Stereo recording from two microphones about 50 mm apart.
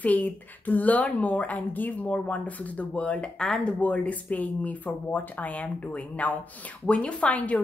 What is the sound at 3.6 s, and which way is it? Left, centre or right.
A woman's voice, left.